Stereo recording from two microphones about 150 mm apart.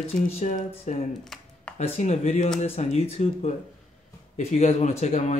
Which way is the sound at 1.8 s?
50° left (ahead or behind).